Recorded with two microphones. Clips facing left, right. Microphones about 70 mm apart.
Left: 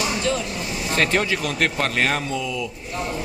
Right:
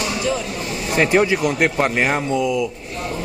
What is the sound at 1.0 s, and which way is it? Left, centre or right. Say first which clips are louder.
Speech: right 6 dB; centre.